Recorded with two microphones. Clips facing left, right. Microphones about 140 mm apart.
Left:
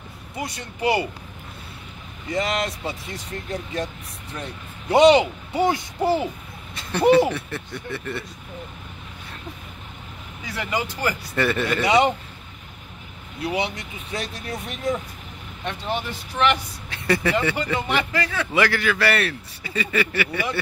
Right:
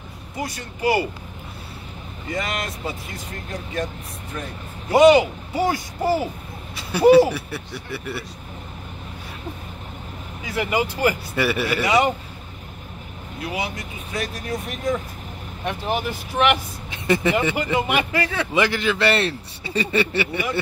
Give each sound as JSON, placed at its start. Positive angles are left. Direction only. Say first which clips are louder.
{"t": 0.4, "sound": "speech", "louder": "right 1 dB", "side_deg": 25}
{"t": 2.3, "sound": "speech", "louder": "left 3 dB", "side_deg": 30}
{"t": 4.9, "sound": "speech", "louder": "right 1 dB", "side_deg": 25}
{"t": 6.7, "sound": "speech", "louder": "right 3 dB", "side_deg": -5}
{"t": 10.5, "sound": "speech", "louder": "right 4 dB", "side_deg": -15}
{"t": 11.8, "sound": "speech", "louder": "left 1 dB", "side_deg": 25}
{"t": 13.5, "sound": "speech", "louder": "left 3 dB", "side_deg": 25}
{"t": 15.6, "sound": "a man's voice", "louder": "right 3 dB", "side_deg": -10}